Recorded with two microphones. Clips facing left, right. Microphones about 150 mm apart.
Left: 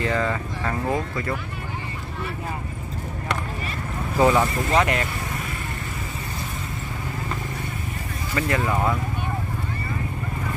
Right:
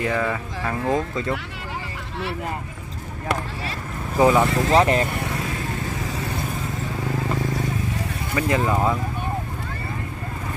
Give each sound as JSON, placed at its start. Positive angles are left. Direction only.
{"t": 0.0, "sound": "speech", "side_deg": -10}
{"t": 0.8, "sound": "speech", "side_deg": -20}
{"t": 4.2, "sound": "speech", "side_deg": -10}
{"t": 4.5, "sound": "speech", "side_deg": -85}
{"t": 4.7, "sound": "speech", "side_deg": -35}
{"t": 8.4, "sound": "speech", "side_deg": -15}